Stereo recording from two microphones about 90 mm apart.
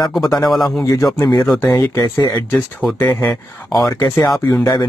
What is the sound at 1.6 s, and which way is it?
Speech, 40° left (ahead or behind).